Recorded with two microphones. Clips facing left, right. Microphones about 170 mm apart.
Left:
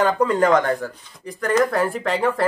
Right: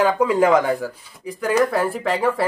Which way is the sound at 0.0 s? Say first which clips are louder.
Right 1 dB; 5° right (ahead or behind).